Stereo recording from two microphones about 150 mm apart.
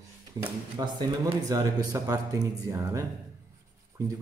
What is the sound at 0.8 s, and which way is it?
Speech, 25° right (ahead or behind).